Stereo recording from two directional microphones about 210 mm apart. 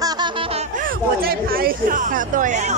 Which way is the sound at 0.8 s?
45° right (ahead or behind).